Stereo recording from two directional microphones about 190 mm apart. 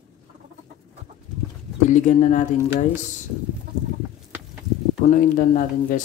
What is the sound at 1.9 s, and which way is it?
Speech, 40° left (ahead or behind).